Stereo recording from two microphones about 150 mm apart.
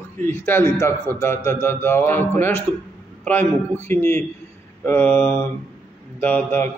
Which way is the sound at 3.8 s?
15° left (ahead or behind).